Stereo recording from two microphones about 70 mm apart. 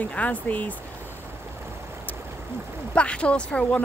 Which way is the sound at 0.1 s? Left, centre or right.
Left.